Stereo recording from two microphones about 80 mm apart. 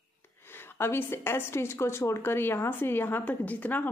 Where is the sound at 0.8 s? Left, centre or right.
Left.